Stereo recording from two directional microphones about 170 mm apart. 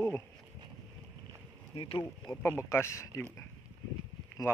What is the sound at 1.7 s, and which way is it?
Speech, 25° left (ahead or behind).